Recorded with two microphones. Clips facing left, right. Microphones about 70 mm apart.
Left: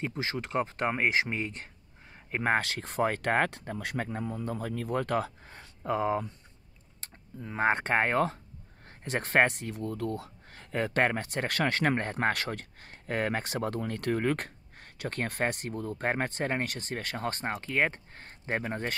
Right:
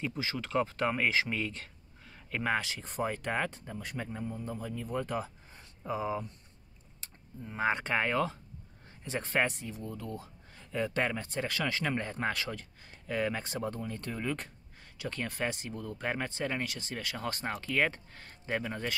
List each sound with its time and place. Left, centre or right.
0.2 s speech: left
2.4 s speech: left
2.7 s speech: left
8.8 s speech: left
15.7 s speech: left